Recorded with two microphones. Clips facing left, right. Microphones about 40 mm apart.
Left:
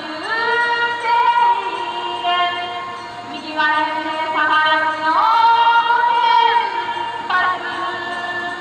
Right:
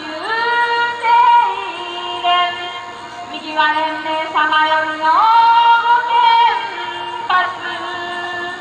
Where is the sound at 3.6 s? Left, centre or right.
Right.